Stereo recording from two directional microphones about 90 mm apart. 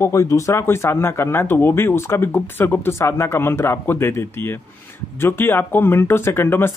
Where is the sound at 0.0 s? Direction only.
35° left (ahead or behind).